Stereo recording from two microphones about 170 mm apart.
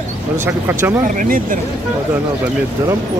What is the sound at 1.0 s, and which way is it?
Speech, 50° right (ahead or behind).